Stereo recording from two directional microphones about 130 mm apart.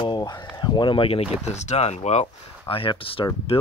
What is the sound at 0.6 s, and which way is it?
Speech, 35° left (ahead or behind).